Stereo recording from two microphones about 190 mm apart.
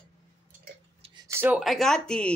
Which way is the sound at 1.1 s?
10° right (ahead or behind).